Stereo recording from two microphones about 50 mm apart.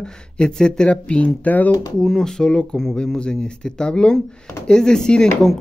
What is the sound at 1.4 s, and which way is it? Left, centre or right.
Speech, left.